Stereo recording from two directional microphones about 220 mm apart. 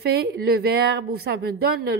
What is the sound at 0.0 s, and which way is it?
A woman's voice, 45° right (ahead or behind).